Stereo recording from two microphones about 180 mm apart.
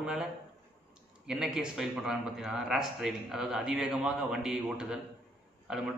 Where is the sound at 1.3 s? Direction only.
5° right (ahead or behind).